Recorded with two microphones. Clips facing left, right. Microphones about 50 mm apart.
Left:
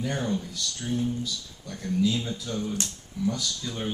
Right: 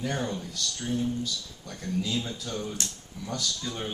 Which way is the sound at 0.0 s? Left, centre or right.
Centre.